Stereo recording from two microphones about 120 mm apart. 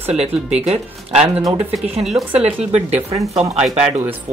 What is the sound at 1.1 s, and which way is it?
Speech, 5° right (ahead or behind).